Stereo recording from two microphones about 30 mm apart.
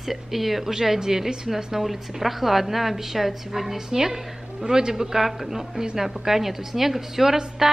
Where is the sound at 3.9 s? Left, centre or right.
Centre.